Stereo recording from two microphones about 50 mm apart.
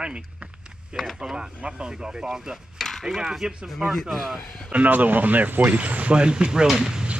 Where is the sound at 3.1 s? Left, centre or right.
Centre.